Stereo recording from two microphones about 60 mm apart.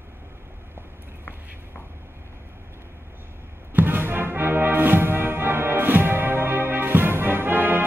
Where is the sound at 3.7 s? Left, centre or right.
Right.